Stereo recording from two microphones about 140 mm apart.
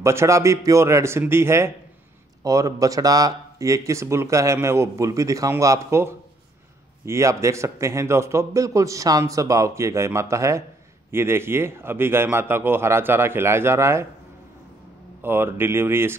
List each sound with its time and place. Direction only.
0.0 s speech: 20° right (ahead or behind)
7.1 s a man's voice: 20° right (ahead or behind)
15.2 s a man's voice: 15° right (ahead or behind)